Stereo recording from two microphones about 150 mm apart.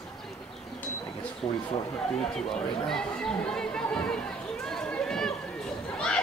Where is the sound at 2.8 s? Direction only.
5° left (ahead or behind).